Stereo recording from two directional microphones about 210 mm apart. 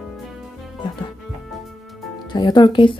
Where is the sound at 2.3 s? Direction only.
20° left (ahead or behind).